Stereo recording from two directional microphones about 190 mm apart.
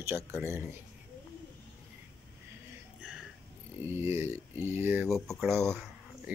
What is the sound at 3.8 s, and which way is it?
Speech, 15° right (ahead or behind).